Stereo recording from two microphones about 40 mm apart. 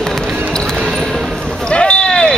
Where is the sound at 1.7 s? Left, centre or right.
Left.